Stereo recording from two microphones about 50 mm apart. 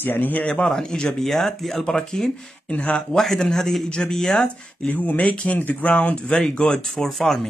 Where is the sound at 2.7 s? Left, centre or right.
Left.